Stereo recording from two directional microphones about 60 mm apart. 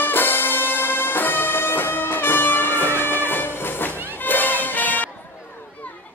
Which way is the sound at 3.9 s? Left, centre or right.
Right.